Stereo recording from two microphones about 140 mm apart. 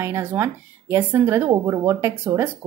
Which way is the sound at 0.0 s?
15° right (ahead or behind).